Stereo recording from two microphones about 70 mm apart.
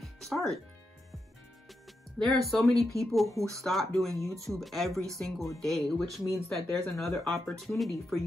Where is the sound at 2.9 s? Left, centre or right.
Right.